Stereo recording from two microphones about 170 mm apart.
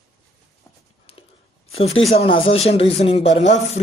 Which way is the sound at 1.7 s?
35° left (ahead or behind).